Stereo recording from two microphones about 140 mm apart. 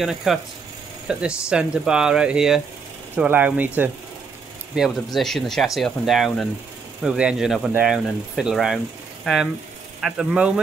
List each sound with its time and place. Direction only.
0.0 s speech: centre (ahead or behind)
4.7 s speech: centre (ahead or behind)